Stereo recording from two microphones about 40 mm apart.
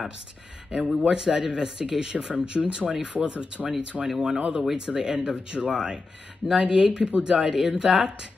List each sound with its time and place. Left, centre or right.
0.7 s speech: right
3.9 s speech: centre
4.4 s speech: right
4.7 s speech: right
6.4 s speech: centre